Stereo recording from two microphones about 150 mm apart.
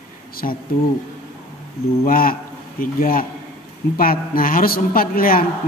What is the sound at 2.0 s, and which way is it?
A man's voice, 75° left (ahead or behind).